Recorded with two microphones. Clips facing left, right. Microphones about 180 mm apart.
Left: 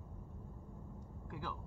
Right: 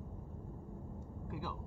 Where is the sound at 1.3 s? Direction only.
10° right (ahead or behind).